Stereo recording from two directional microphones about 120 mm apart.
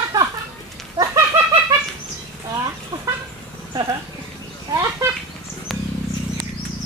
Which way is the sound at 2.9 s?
35° right (ahead or behind).